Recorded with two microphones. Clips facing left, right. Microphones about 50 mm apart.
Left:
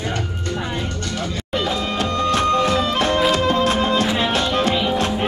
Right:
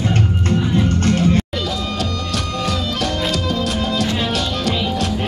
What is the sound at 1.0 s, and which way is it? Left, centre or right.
Music, right.